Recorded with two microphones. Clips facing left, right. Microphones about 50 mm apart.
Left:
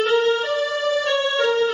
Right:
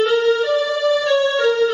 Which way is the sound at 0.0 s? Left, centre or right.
Left.